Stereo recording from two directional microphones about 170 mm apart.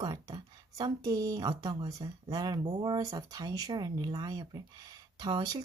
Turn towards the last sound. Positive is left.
turn(degrees=-25)  # may be behind; listen again after turning